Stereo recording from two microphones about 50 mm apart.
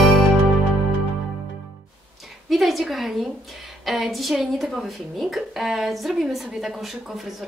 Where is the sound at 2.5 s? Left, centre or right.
Centre.